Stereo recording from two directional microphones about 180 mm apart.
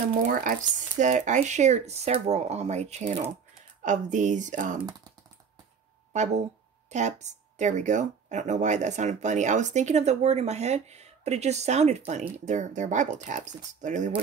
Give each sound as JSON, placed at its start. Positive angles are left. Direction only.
{"t": 0.3, "sound": "speech", "side_deg": -50}
{"t": 6.1, "sound": "speech", "side_deg": -40}